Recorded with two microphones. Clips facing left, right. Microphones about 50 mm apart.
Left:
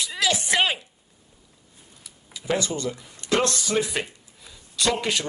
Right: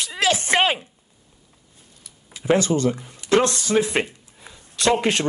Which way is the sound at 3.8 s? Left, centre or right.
Right.